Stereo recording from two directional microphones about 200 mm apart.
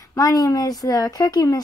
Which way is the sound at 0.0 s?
15° left (ahead or behind).